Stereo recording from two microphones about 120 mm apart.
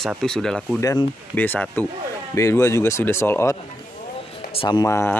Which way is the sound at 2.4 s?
25° left (ahead or behind).